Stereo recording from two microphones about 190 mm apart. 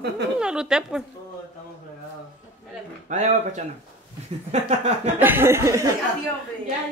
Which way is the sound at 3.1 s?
40° right (ahead or behind).